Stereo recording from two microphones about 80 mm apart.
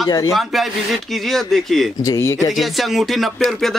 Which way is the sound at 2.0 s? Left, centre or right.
Left.